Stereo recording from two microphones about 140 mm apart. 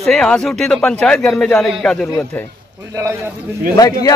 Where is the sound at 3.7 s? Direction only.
25° left (ahead or behind).